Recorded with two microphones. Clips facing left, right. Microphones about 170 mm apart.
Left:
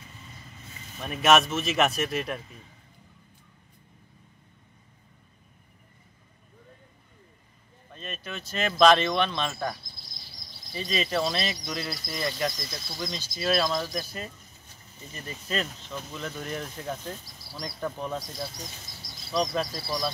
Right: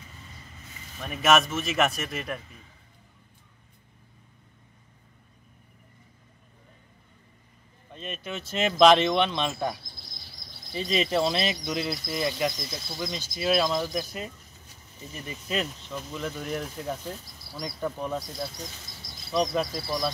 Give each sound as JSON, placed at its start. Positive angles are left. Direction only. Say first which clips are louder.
{"t": 0.9, "sound": "speech", "louder": "left 1 dB", "side_deg": 0}
{"t": 7.9, "sound": "speech", "louder": "right 3 dB", "side_deg": -20}
{"t": 19.4, "sound": "speech", "louder": "right 2 dB", "side_deg": 0}